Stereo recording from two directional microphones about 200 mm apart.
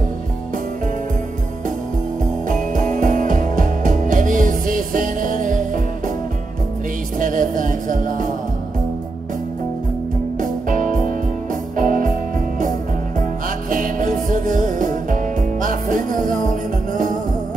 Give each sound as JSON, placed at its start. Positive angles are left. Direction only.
{"t": 2.4, "sound": "music", "side_deg": -40}
{"t": 7.2, "sound": "music", "side_deg": -40}
{"t": 10.4, "sound": "music", "side_deg": -40}
{"t": 13.7, "sound": "music", "side_deg": -40}